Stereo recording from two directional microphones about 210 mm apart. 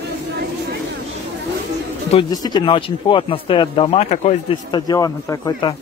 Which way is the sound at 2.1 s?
20° left (ahead or behind).